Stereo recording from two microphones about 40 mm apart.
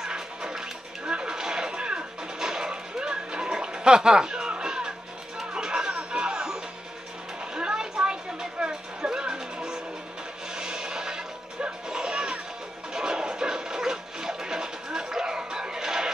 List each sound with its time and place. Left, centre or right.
0.0 s music: centre